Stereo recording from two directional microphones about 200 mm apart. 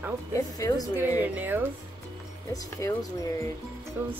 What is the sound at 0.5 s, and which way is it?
Speech, 20° left (ahead or behind).